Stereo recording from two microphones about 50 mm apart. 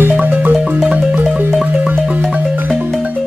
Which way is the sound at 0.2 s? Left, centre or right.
Right.